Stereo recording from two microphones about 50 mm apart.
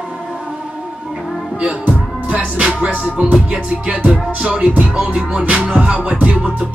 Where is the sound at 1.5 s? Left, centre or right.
Right.